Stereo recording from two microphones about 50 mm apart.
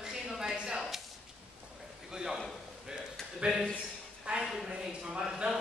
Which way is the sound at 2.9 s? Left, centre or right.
Centre.